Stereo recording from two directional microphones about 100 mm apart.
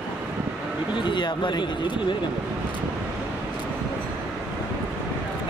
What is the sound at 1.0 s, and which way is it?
Speech, 50° left (ahead or behind).